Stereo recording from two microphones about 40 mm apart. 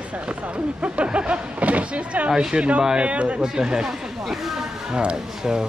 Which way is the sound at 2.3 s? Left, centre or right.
Centre.